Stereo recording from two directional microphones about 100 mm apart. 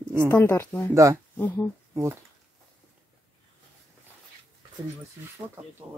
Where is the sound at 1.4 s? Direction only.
20° left (ahead or behind).